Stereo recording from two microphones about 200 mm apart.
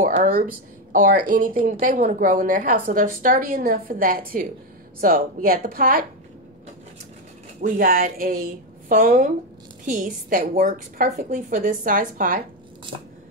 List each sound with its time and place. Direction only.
0.2 s speech: 45° right (ahead or behind)
7.6 s speech: 45° right (ahead or behind)